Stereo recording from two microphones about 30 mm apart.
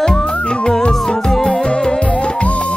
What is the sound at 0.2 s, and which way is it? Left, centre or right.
Music, left.